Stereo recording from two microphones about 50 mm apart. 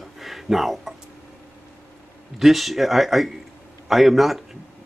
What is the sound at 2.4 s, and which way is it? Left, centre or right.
A man's voice, centre.